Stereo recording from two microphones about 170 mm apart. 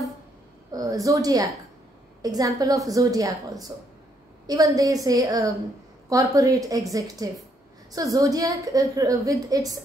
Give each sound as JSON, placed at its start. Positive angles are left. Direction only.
{"t": 0.7, "sound": "a woman's voice", "side_deg": -20}